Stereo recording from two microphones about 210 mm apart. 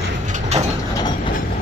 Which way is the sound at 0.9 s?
20° left (ahead or behind).